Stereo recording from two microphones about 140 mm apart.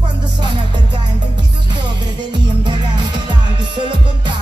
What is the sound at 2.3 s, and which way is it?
Music, 30° right (ahead or behind).